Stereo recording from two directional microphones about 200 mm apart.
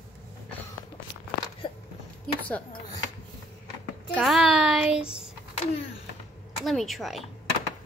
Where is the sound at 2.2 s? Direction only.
5° left (ahead or behind).